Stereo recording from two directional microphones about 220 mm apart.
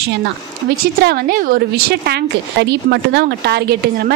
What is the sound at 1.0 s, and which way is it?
A woman's voice, 45° right (ahead or behind).